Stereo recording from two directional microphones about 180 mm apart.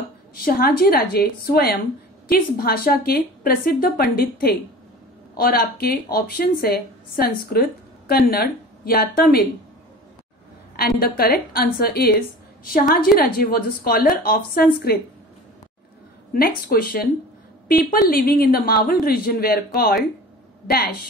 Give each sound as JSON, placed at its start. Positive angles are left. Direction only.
{"t": 0.3, "sound": "speech", "side_deg": 55}
{"t": 10.8, "sound": "speech", "side_deg": 55}
{"t": 16.3, "sound": "speech", "side_deg": 55}